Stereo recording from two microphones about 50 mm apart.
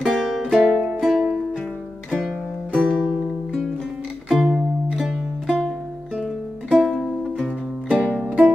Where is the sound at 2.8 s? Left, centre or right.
Centre.